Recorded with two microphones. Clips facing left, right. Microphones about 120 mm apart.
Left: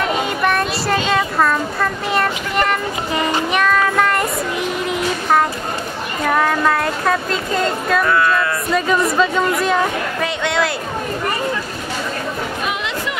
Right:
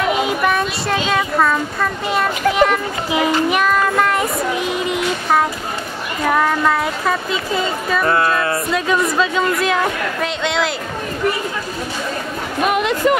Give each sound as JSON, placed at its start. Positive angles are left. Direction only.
{"t": 0.3, "sound": "speech", "side_deg": 0}
{"t": 2.5, "sound": "child singing", "side_deg": 0}
{"t": 4.8, "sound": "music", "side_deg": 0}
{"t": 6.2, "sound": "a woman's voice", "side_deg": 0}
{"t": 8.0, "sound": "music", "side_deg": -30}
{"t": 8.7, "sound": "a woman's voice", "side_deg": 0}
{"t": 12.6, "sound": "music", "side_deg": -50}